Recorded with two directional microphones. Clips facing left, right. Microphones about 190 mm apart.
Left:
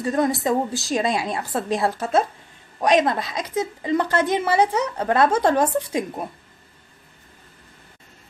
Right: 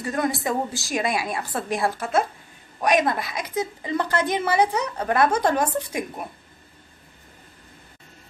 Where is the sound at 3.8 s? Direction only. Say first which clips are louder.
Left 4 dB; 25° left (ahead or behind).